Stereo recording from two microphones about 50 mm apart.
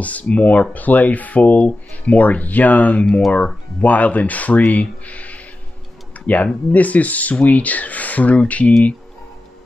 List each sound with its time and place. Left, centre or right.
0.0 s speech: left
3.1 s speech: centre
3.8 s speech: left